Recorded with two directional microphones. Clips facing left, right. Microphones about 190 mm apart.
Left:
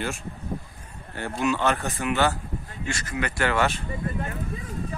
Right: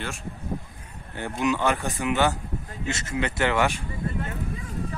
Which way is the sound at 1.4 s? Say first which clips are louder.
Even; 15° right (ahead or behind).